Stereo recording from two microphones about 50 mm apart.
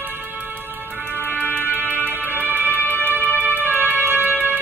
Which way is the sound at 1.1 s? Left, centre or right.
Left.